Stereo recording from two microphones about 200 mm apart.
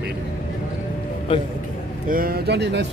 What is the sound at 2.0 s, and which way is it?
Speech, 45° right (ahead or behind).